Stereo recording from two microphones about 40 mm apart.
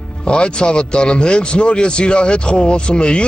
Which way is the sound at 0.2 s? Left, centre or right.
Left.